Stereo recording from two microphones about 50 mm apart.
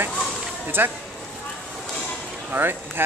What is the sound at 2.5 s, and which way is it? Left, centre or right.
Speech, right.